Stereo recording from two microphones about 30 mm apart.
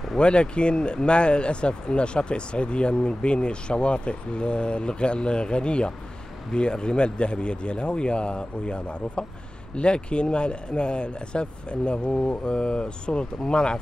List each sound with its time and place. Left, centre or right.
0.2 s speech: left